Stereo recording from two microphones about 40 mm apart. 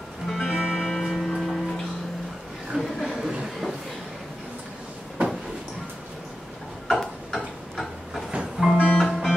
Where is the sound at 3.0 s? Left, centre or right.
Centre.